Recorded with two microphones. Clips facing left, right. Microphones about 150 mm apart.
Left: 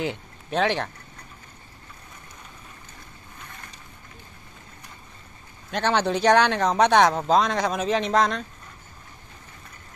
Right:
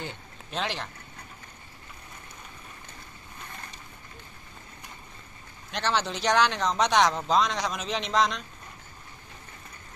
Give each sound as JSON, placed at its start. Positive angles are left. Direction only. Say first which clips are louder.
{"t": 0.5, "sound": "speech", "louder": "left 9 dB", "side_deg": 55}
{"t": 5.7, "sound": "speech", "louder": "left 6 dB", "side_deg": 55}